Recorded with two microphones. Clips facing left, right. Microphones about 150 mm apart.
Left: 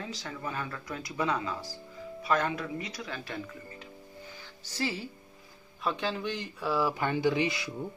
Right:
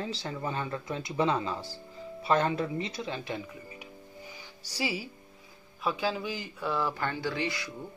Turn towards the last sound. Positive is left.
turn(degrees=20)  # may be behind; listen again after turning